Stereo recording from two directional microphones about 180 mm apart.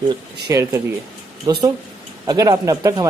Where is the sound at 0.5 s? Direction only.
15° right (ahead or behind).